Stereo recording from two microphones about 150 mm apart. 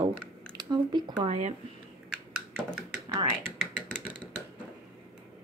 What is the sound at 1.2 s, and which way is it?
Speech, 45° right (ahead or behind).